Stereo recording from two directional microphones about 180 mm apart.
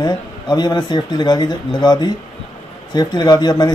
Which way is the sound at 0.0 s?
25° left (ahead or behind).